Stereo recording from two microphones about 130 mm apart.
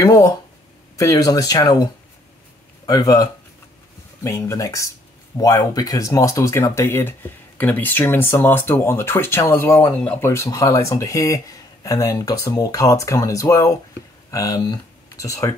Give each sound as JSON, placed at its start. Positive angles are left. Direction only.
{"t": 0.0, "sound": "speech", "side_deg": 25}
{"t": 2.9, "sound": "speech", "side_deg": 25}